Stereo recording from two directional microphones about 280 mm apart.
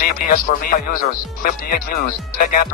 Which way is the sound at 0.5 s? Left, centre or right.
Left.